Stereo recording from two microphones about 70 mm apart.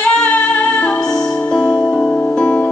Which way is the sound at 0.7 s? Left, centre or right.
Centre.